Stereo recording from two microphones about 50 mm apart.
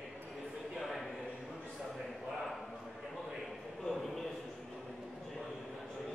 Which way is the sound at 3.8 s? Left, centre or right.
Centre.